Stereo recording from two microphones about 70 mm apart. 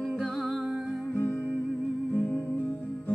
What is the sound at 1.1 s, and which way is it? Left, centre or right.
Music, left.